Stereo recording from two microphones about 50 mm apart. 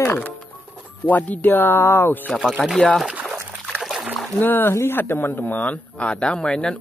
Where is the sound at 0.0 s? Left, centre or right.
Left.